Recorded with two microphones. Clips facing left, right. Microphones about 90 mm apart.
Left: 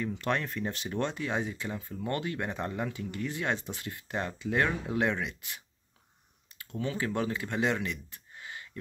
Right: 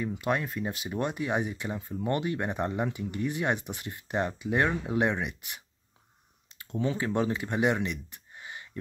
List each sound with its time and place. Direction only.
0.0 s speech: 10° right (ahead or behind)